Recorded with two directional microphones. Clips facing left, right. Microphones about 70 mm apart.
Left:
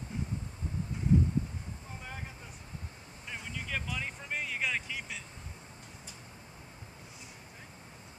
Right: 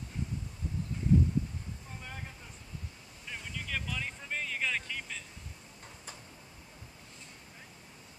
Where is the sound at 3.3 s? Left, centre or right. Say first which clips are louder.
Left 1 dB; centre.